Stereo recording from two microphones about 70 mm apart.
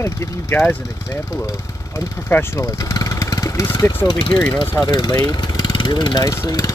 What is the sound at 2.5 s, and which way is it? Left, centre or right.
Vehicle, left.